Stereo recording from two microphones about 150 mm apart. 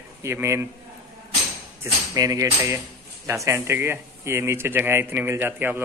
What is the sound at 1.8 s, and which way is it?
Speech, 20° right (ahead or behind).